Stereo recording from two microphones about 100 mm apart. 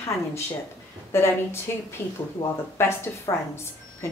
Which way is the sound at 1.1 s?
25° left (ahead or behind).